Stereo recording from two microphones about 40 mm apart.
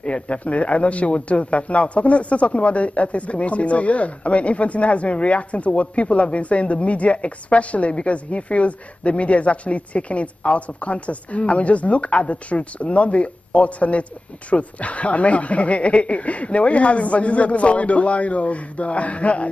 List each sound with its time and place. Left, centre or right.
0.0 s a man's voice: left